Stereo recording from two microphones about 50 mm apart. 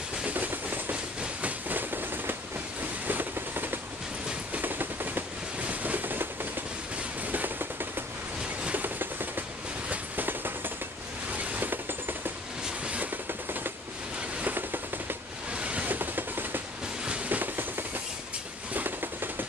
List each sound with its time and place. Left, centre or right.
0.2 s train: right
3.1 s vehicle: right
4.6 s train: right
5.6 s boat: right
7.2 s vehicle: right
8.7 s train: right
12.6 s train: right
14.4 s a sound: right
15.5 s a sound: right
15.9 s train: right
17.3 s a sound: right